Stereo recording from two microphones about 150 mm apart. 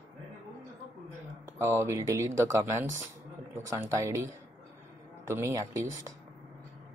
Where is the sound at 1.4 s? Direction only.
15° right (ahead or behind).